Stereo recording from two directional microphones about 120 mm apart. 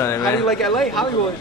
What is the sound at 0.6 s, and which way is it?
Speech, centre (ahead or behind).